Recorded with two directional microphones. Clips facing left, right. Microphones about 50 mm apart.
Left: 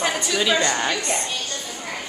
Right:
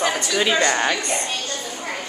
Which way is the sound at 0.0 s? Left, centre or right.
Centre.